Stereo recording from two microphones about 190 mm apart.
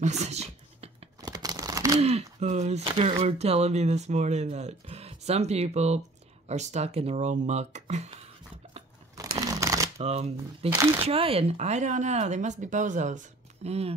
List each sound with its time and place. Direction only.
0.0 s whispering: 35° right (ahead or behind)
1.2 s crumpling: 20° right (ahead or behind)
2.0 s speech: 35° right (ahead or behind)
9.1 s crumpling: 20° right (ahead or behind)
9.9 s speech: 35° right (ahead or behind)